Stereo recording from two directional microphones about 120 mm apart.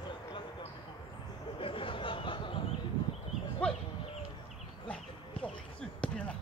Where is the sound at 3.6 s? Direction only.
10° left (ahead or behind).